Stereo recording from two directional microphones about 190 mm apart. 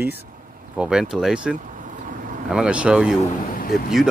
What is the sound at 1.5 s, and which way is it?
Vehicle, 45° right (ahead or behind).